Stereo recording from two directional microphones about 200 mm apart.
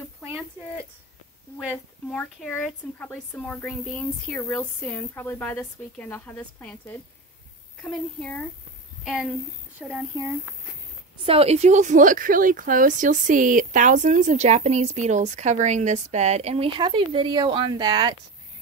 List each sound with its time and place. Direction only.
1.7 s a woman's voice: 5° left (ahead or behind)
10.1 s speech: 15° right (ahead or behind)
11.2 s speech: 30° right (ahead or behind)